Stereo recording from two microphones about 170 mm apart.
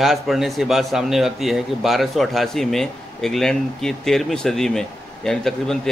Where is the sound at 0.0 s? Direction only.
Centre (ahead or behind).